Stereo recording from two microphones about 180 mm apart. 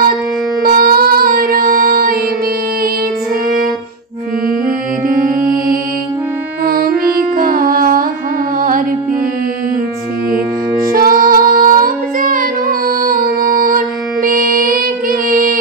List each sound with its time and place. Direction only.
0.7 s music: 55° right (ahead or behind)
5.0 s music: 50° right (ahead or behind)
10.9 s child singing: 55° right (ahead or behind)
14.2 s music: 50° right (ahead or behind)